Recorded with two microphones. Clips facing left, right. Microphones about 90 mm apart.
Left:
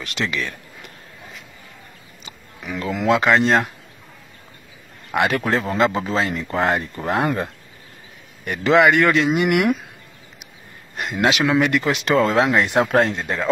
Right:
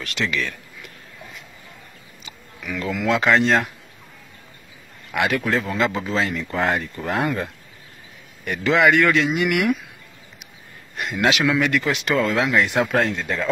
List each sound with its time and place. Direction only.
0.0 s speech: 25° left (ahead or behind)
2.2 s insect: 30° left (ahead or behind)
3.2 s speech: 25° left (ahead or behind)
5.1 s speech: 35° left (ahead or behind)
8.5 s speech: 30° left (ahead or behind)
11.0 s speech: 25° left (ahead or behind)